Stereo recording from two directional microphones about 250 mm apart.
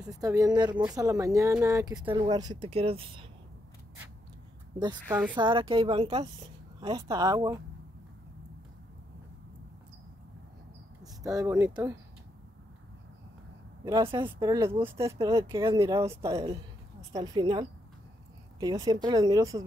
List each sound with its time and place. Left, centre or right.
0.0 s speech: centre
5.3 s speech: centre
11.2 s speech: centre
13.8 s speech: centre